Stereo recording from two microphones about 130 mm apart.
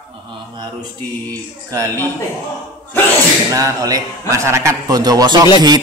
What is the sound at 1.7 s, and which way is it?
Speech, 20° right (ahead or behind).